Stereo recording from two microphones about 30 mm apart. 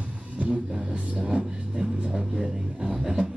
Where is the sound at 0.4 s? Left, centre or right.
Right.